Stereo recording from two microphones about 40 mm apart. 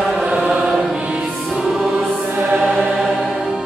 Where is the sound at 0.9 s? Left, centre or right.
Right.